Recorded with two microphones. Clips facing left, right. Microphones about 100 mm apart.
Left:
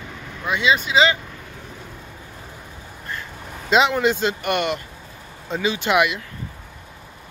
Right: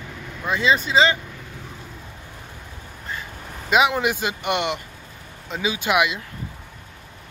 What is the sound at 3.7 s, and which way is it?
Speech, 10° right (ahead or behind).